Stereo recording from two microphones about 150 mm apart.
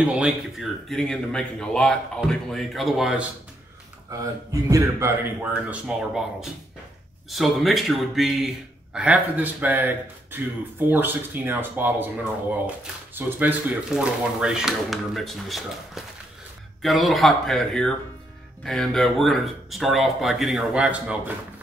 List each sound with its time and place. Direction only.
0.0 s speech: 5° right (ahead or behind)
4.1 s a man's voice: 20° right (ahead or behind)
5.5 s speech: 5° right (ahead or behind)
7.2 s speech: centre (ahead or behind)